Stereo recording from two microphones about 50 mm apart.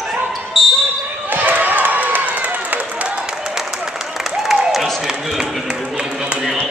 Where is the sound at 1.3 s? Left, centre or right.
Right.